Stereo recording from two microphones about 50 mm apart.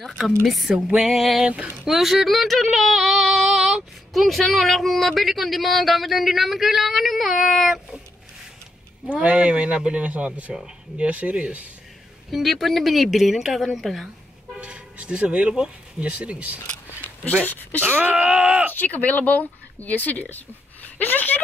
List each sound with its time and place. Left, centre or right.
0.5 s a sound: centre
0.8 s music: centre
1.4 s speech: right
1.9 s a sound: centre
9.1 s speech: right
12.3 s a sound: centre
14.6 s speech: right
17.3 s speech: left
17.6 s speech: left
17.8 s speech: right
18.1 s music: centre
18.7 s speech: left